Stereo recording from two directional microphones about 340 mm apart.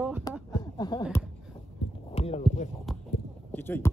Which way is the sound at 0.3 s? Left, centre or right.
Centre.